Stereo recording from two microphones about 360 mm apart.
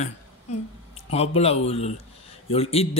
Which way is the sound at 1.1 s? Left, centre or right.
Centre.